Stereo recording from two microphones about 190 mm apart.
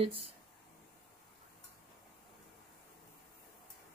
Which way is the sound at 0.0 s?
30° right (ahead or behind).